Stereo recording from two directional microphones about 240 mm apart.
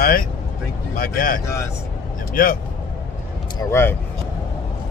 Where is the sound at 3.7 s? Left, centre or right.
Centre.